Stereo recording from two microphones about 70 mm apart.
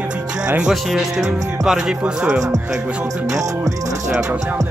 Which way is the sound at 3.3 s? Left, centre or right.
Right.